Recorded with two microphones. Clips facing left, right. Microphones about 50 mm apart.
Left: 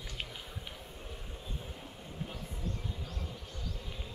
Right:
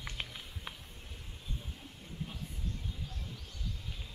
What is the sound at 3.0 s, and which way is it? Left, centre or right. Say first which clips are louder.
Bee: left 3 dB; left.